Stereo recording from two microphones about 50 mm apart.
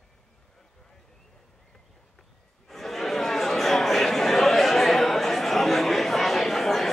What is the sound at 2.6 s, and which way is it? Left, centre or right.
Chatter, centre.